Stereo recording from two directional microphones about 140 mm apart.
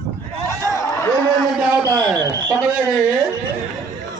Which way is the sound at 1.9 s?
25° right (ahead or behind).